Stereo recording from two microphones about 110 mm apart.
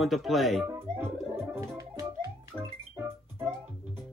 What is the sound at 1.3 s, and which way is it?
Music, 25° right (ahead or behind).